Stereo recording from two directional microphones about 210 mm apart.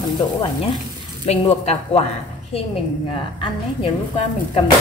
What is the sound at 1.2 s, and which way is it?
Speech, 30° left (ahead or behind).